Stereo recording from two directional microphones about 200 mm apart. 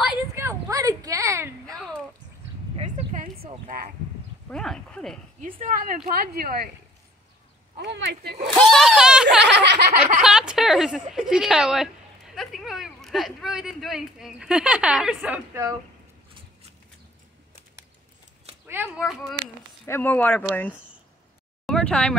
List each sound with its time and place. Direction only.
0.3 s a sound: 15° right (ahead or behind)
2.7 s a sound: 35° right (ahead or behind)
4.5 s speech: 5° left (ahead or behind)
5.4 s speech: 40° right (ahead or behind)
7.7 s speech: 60° right (ahead or behind)
8.5 s speech: centre (ahead or behind)
9.4 s speech: 60° right (ahead or behind)
10.2 s speech: 5° right (ahead or behind)
18.7 s speech: 5° right (ahead or behind)
19.9 s speech: 10° left (ahead or behind)
21.6 s a sound: 5° left (ahead or behind)